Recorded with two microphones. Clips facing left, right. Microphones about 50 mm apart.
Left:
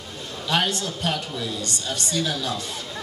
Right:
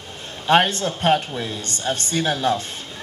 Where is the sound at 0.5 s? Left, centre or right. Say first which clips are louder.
Right 7 dB; right.